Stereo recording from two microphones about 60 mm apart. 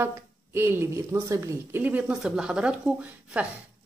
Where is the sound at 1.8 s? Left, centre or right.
Right.